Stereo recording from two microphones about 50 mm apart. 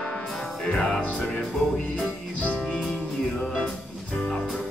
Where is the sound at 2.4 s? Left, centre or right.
Left.